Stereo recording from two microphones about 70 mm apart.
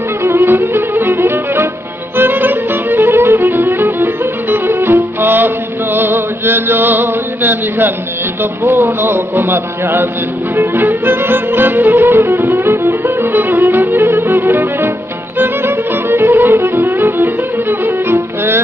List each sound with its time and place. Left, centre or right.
0.2 s violin: right
2.1 s music: right
15.3 s violin: right